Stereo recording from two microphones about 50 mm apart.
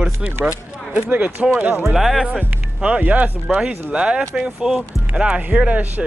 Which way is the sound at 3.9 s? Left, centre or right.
Right.